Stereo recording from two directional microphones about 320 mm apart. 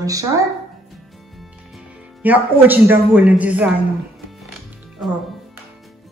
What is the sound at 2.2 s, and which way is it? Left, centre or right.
A man's voice, centre.